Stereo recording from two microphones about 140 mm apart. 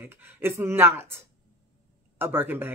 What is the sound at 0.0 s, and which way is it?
Speech, 15° right (ahead or behind).